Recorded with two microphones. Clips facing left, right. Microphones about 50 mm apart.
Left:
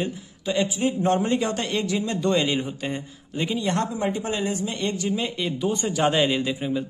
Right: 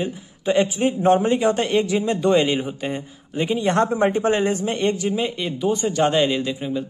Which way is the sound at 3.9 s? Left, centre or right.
Right.